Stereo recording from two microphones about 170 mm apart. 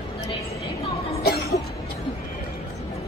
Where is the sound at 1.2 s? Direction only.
65° left (ahead or behind).